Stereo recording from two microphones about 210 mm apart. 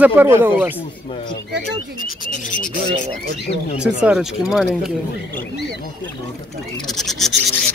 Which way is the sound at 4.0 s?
5° right (ahead or behind).